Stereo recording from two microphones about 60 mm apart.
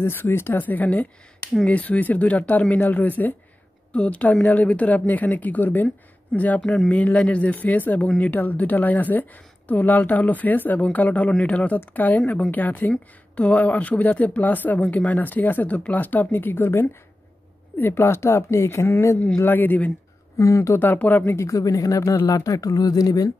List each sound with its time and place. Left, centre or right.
0.0 s speech: left
18.9 s speech: left
19.4 s speech: left
20.3 s speech: left
20.8 s speech: left
21.4 s speech: left